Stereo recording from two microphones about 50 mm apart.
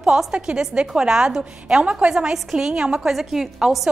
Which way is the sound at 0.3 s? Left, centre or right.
Centre.